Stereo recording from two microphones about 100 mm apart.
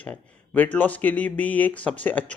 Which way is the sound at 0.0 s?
15° left (ahead or behind).